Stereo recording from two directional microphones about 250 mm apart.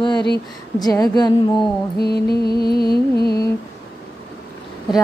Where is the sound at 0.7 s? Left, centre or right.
Centre.